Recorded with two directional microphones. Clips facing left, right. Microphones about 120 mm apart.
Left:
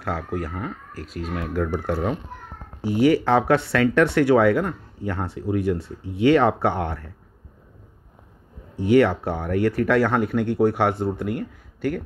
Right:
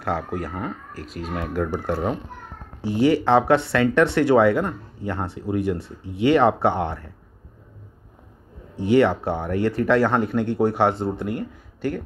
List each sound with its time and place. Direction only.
0.0 s speech: 15° right (ahead or behind)
8.7 s speech: 20° right (ahead or behind)